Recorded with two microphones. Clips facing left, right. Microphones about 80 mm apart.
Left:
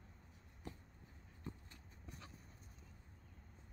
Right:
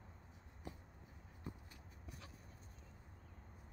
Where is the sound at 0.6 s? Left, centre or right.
Centre.